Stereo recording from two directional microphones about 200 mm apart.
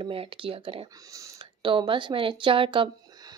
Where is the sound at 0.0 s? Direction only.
25° right (ahead or behind).